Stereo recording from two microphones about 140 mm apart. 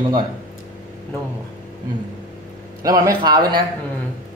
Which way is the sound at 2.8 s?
25° right (ahead or behind).